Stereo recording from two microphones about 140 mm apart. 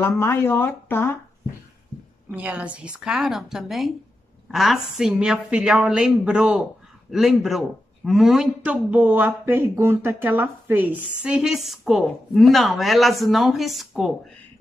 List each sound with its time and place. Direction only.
0.0 s speech: 20° left (ahead or behind)
2.3 s speech: 10° right (ahead or behind)